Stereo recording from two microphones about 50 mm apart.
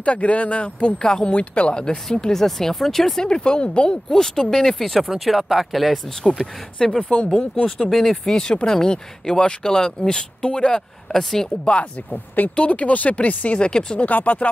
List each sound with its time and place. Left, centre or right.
0.0 s speech: left; by 3.3 s centre
3.3 s speech: centre
6.8 s speech: centre
11.1 s speech: centre
11.6 s speech: left
13.6 s speech: centre
14.0 s speech: left